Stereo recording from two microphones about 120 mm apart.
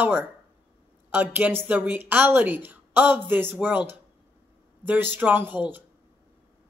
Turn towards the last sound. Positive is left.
turn(degrees=-15)  # may be behind; listen again after turning